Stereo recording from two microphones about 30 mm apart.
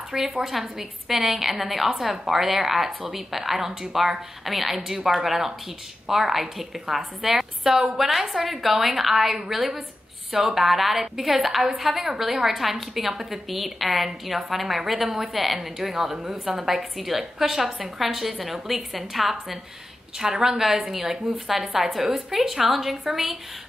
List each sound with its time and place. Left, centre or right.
0.4 s a woman's voice: centre
11.9 s a woman's voice: right
12.2 s a woman's voice: centre
20.2 s a woman's voice: right
20.5 s a woman's voice: centre